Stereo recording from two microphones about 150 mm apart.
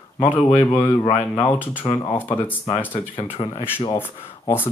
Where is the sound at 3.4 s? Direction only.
35° left (ahead or behind).